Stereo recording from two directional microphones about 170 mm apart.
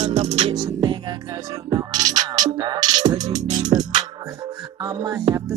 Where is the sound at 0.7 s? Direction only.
25° right (ahead or behind).